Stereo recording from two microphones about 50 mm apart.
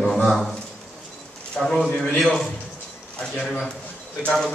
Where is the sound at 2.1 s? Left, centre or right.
Centre.